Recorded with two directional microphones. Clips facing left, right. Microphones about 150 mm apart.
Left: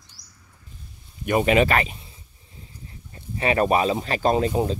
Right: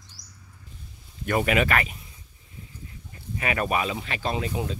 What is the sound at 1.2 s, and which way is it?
Speech, 25° left (ahead or behind).